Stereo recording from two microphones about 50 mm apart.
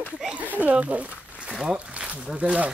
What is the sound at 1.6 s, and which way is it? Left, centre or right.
Speech, centre.